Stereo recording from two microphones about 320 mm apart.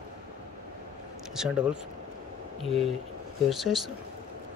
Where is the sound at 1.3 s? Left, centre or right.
Centre.